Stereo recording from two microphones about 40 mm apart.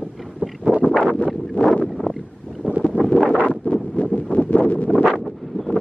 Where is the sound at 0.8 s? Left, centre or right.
Right.